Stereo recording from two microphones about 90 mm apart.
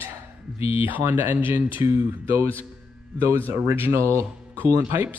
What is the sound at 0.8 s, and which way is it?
Speech, 25° right (ahead or behind).